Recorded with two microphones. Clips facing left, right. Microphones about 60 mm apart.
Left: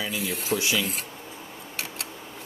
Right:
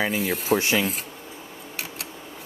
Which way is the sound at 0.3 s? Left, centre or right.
Centre.